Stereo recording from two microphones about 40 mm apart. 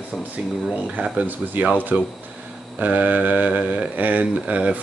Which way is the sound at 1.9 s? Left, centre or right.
Right.